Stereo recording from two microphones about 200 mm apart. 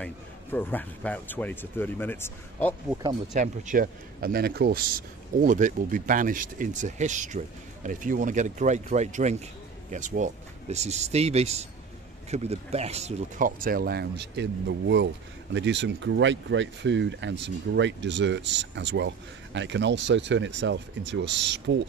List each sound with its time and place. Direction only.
0.0 s a man's voice: 10° left (ahead or behind)
3.3 s speech: 40° right (ahead or behind); by 21.8 s 65° right (ahead or behind)